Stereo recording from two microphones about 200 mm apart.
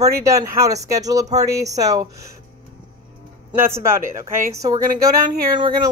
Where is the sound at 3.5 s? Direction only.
15° right (ahead or behind).